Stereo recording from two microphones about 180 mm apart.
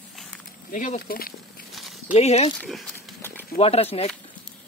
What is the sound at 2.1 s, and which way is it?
Speech, 35° left (ahead or behind).